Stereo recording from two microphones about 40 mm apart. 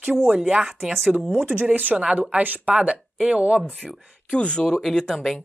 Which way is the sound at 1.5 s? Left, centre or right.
Right.